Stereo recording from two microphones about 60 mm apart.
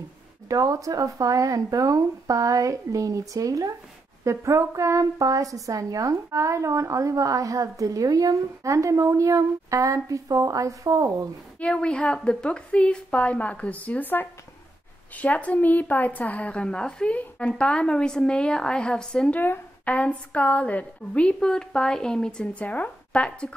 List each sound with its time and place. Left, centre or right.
0.5 s a woman's voice: right
4.2 s a woman's voice: right
8.7 s a woman's voice: right
11.6 s a woman's voice: centre
19.3 s speech: left
19.8 s a woman's voice: left